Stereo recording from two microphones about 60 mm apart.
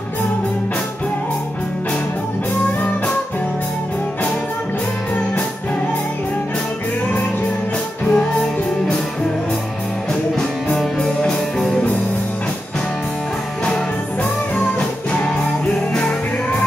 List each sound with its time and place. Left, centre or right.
8.0 s music: left
11.0 s music: centre
14.5 s music: centre